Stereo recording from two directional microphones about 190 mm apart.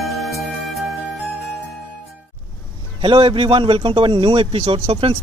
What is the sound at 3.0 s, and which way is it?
A man's voice, 25° right (ahead or behind).